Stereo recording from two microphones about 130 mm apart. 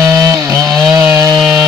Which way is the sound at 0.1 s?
25° right (ahead or behind).